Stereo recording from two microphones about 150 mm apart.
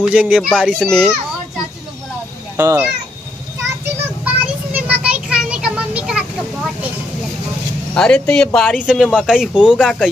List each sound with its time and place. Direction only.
0.0 s speech: 10° right (ahead or behind)
2.5 s speech: 15° right (ahead or behind)
4.7 s vehicle: 10° right (ahead or behind)
7.9 s speech: 5° left (ahead or behind)